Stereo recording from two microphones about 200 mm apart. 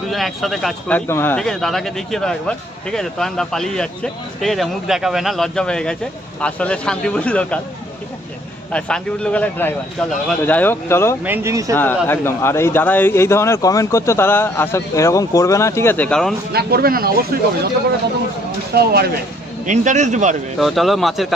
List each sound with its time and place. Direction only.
0.1 s speech: centre (ahead or behind)
8.7 s speech: 5° left (ahead or behind)
11.2 s speech: 10° right (ahead or behind)
11.7 s speech: 10° left (ahead or behind)
16.5 s speech: 50° right (ahead or behind)
18.7 s speech: 50° right (ahead or behind)
19.6 s speech: 40° right (ahead or behind)
20.5 s speech: centre (ahead or behind)